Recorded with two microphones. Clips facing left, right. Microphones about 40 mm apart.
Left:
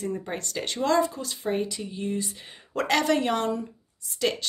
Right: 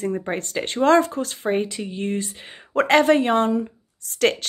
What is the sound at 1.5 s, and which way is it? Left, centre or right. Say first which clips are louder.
Speech: right 4 dB; right.